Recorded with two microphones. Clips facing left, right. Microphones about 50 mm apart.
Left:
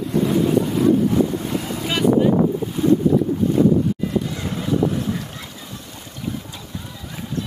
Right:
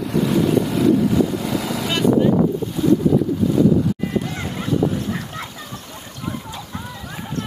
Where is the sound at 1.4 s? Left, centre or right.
Right.